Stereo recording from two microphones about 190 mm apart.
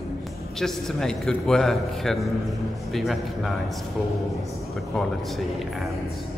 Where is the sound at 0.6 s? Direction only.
5° left (ahead or behind).